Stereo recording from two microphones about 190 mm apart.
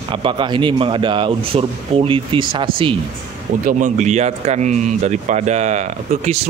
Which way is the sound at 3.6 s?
40° right (ahead or behind).